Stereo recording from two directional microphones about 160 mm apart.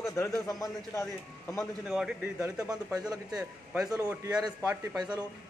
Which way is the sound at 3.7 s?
20° right (ahead or behind).